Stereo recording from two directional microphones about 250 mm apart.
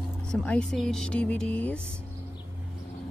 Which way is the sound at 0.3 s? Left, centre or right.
Centre.